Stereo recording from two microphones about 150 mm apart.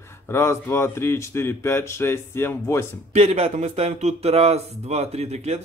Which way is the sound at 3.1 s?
45° right (ahead or behind).